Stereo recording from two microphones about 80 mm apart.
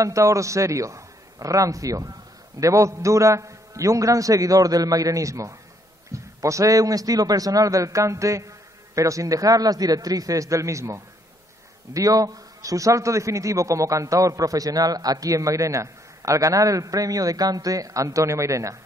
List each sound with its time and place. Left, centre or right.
0.0 s a man's voice: right